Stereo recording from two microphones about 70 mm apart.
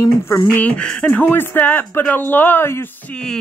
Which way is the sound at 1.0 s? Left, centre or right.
Left.